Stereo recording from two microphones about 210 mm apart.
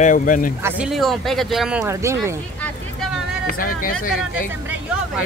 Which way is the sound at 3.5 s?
40° left (ahead or behind).